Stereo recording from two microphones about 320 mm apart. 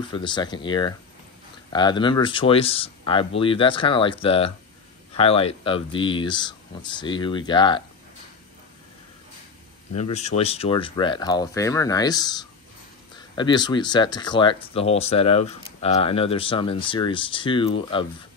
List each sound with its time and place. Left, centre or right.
0.1 s speech: centre
9.9 s speech: centre